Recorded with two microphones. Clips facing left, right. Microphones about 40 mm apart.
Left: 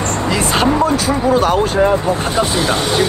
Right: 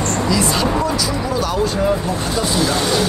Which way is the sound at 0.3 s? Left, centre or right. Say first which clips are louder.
Left 4 dB; left.